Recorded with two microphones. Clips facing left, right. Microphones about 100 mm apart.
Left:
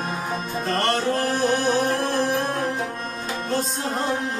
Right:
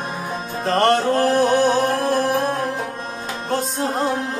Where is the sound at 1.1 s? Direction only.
45° right (ahead or behind).